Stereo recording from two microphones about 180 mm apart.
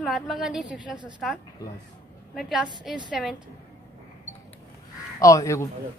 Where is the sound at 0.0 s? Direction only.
Centre (ahead or behind).